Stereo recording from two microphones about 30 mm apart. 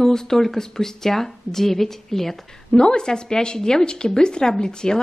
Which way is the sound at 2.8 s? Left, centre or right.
Left.